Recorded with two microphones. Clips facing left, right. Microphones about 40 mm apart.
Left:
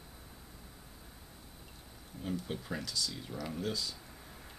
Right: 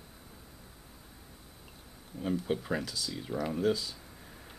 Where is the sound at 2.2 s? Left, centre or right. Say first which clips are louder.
Right 7 dB; right.